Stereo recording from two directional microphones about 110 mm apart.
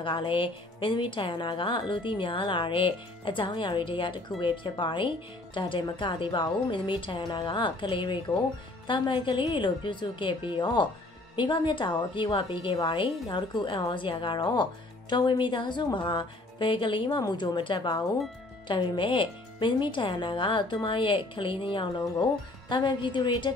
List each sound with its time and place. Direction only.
0.0 s speech: 50° left (ahead or behind)
17.2 s speech: 35° left (ahead or behind)